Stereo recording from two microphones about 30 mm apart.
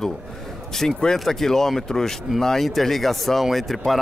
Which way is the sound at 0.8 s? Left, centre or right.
Centre.